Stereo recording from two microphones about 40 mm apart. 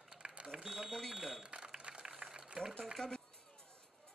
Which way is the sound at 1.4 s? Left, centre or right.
Right.